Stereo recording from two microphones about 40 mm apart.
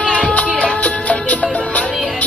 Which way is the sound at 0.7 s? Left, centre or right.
Left.